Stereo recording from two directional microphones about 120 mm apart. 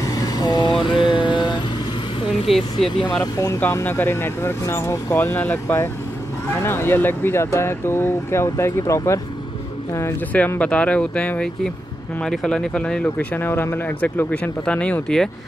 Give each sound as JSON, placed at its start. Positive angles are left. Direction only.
{"t": 0.0, "sound": "vehicle", "side_deg": 30}
{"t": 0.8, "sound": "mantra", "side_deg": 45}
{"t": 2.4, "sound": "speech", "side_deg": 0}
{"t": 3.2, "sound": "speech", "side_deg": 30}
{"t": 3.5, "sound": "speech", "side_deg": 15}